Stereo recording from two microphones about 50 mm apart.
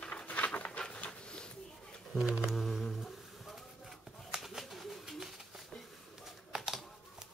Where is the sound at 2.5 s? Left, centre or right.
Centre.